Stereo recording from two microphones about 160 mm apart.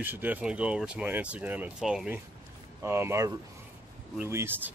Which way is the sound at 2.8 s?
15° right (ahead or behind).